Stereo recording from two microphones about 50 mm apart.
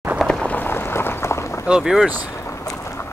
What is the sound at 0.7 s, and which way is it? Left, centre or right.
Run, left.